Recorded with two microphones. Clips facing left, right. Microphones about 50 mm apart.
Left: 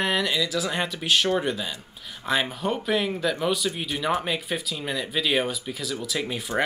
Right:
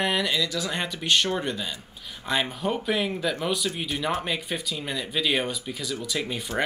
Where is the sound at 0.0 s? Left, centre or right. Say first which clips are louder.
Left 1 dB; centre.